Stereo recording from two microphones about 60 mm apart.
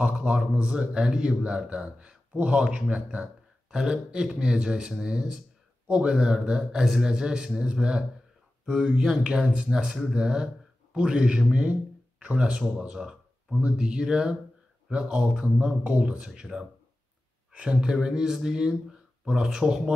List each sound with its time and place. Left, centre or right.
0.1 s a man's voice: centre
16.3 s a man's voice: centre
17.5 s a man's voice: centre